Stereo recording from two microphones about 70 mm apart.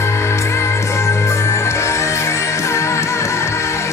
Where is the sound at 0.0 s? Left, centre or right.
Left.